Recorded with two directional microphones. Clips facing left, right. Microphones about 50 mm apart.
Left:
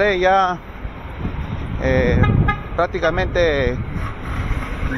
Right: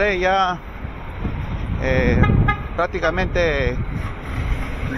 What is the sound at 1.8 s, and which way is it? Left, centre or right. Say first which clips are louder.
Speech: left 2 dB; right.